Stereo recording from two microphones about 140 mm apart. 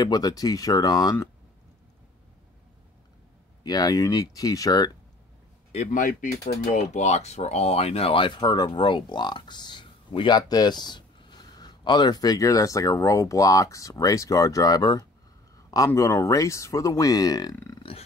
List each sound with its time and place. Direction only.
0.0 s speech: 30° left (ahead or behind)
3.6 s speech: 30° left (ahead or behind)
5.7 s speech: 60° left (ahead or behind); by 6.4 s 75° left (ahead or behind)
6.8 s speech: 55° left (ahead or behind); by 17.6 s 25° left (ahead or behind)
17.7 s burping: 40° left (ahead or behind)